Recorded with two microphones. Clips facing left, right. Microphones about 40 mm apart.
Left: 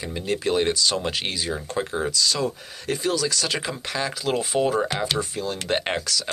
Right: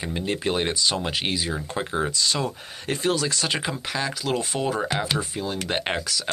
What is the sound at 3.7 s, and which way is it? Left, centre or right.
Speech, centre.